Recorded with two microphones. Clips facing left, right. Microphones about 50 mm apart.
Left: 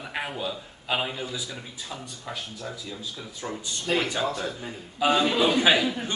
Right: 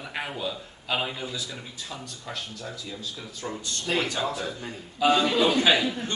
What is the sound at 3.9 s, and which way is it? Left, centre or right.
A man's voice, centre.